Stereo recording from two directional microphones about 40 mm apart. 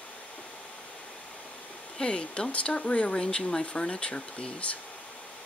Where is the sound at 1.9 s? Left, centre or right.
Left.